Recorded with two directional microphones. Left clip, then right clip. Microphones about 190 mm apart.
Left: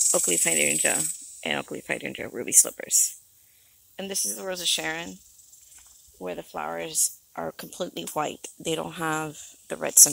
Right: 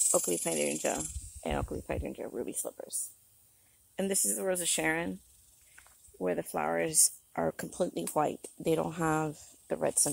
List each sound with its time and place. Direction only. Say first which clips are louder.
0.1 s speech: left 6 dB; 10° left (ahead or behind)
3.9 s speech: left 1 dB; 30° right (ahead or behind)
6.1 s speech: right 1 dB; 30° right (ahead or behind); by 9.9 s 5° right (ahead or behind)